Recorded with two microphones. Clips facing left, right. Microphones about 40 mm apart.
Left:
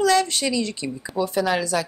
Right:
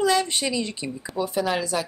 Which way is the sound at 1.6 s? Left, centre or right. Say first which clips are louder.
Left 2 dB; right.